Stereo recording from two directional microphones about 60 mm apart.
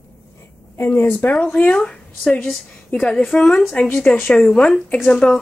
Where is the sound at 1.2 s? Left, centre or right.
Left; by 3.3 s centre.